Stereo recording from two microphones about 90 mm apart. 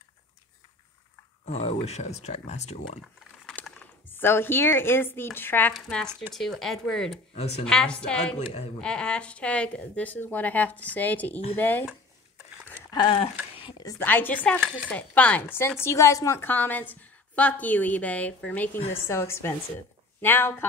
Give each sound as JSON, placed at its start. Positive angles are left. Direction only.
{"t": 3.8, "sound": "speech", "side_deg": 25}
{"t": 5.7, "sound": "a woman's voice", "side_deg": 5}
{"t": 12.9, "sound": "speech", "side_deg": 75}
{"t": 13.9, "sound": "a woman's voice", "side_deg": 20}
{"t": 15.8, "sound": "a woman's voice", "side_deg": 35}
{"t": 16.3, "sound": "a woman's voice", "side_deg": 20}
{"t": 19.0, "sound": "a woman's voice", "side_deg": 30}